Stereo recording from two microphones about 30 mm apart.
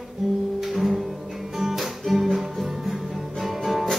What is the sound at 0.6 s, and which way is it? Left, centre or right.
Music, centre.